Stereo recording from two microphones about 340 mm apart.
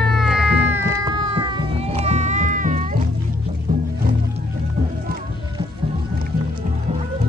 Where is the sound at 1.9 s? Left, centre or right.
Centre.